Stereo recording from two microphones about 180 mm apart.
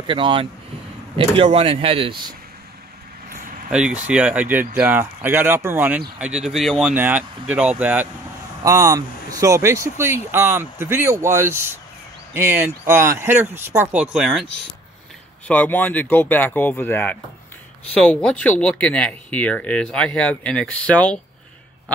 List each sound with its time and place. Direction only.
0.0 s speech: 30° right (ahead or behind)
3.7 s speech: 5° right (ahead or behind)
8.6 s speech: 20° right (ahead or behind)
15.4 s speech: 10° left (ahead or behind)